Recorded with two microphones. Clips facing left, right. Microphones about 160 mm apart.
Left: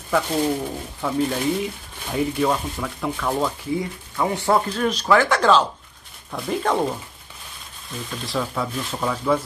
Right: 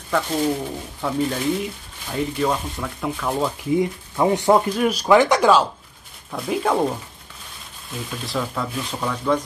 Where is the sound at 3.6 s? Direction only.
20° right (ahead or behind); by 6.9 s centre (ahead or behind).